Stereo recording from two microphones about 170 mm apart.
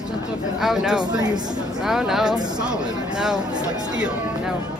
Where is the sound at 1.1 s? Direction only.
25° right (ahead or behind).